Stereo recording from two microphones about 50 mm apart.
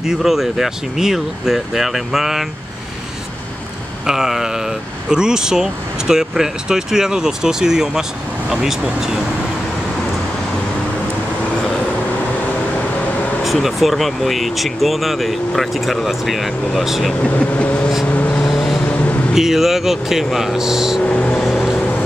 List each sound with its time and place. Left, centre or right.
0.0 s speech: centre
4.0 s speech: centre
13.4 s speech: centre
17.3 s speech: left
18.0 s vehicle: left
18.5 s vehicle: centre
18.9 s a sound: left
19.3 s speech: centre
21.0 s vehicle: left
21.4 s vehicle: centre